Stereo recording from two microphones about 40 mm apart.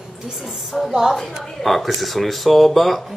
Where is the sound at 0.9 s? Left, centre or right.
Centre.